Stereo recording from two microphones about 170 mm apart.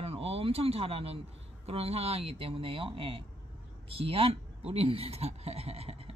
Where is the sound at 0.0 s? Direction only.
35° right (ahead or behind).